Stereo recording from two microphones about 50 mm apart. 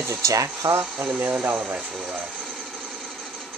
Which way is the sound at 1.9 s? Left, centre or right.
Centre.